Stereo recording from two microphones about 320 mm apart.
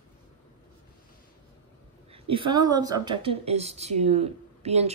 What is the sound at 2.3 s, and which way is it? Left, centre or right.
Speech, centre.